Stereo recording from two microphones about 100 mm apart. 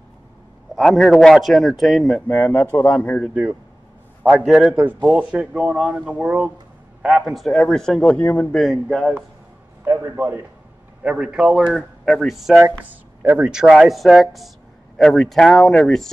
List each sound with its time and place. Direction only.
0.7 s speech: centre (ahead or behind)
2.2 s a man's voice: 15° left (ahead or behind)
4.2 s a man's voice: 15° right (ahead or behind)
4.5 s speech: centre (ahead or behind)
4.7 s a man's voice: 20° right (ahead or behind); by 8.5 s 15° left (ahead or behind)
8.5 s speech: centre (ahead or behind)
9.8 s a man's voice: 25° right (ahead or behind)
11.0 s speech: 10° right (ahead or behind)
13.2 s speech: 15° right (ahead or behind); by 16.1 s 5° left (ahead or behind)